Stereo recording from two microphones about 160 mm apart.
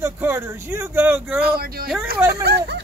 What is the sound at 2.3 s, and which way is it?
Speech, 90° right.